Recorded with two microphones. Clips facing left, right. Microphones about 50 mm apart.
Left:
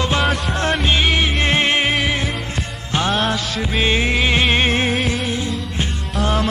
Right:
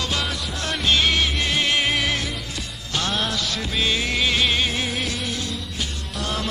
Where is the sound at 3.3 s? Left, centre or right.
Left.